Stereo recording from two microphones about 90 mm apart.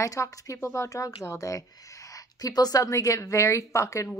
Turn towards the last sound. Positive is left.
turn(degrees=35)  # may be behind; listen again after turning